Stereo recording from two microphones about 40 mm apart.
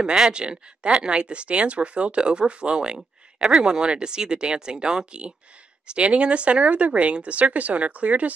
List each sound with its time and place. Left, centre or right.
0.0 s speech: centre; by 8.3 s right